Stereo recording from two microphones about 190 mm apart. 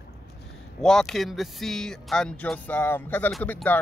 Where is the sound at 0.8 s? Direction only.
Centre (ahead or behind).